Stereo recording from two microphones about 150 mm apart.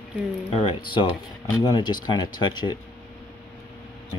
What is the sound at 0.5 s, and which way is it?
Speech, 35° left (ahead or behind).